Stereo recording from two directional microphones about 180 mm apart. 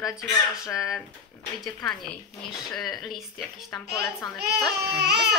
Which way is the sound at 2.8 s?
Centre (ahead or behind).